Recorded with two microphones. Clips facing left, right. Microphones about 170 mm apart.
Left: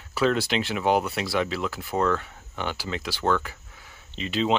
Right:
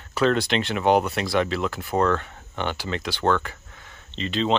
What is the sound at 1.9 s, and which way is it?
Speech, 75° right (ahead or behind).